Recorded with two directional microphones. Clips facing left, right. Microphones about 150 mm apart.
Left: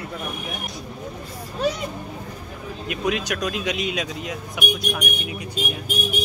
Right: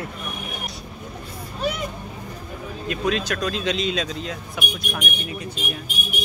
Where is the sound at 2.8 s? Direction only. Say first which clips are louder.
Right 1 dB; 15° left (ahead or behind).